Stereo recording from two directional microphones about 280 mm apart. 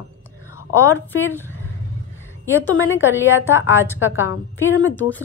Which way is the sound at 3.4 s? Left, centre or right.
Left.